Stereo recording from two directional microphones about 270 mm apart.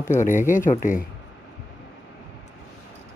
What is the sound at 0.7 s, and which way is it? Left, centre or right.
Speech, left.